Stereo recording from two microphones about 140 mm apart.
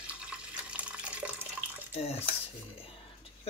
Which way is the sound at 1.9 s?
50° left (ahead or behind).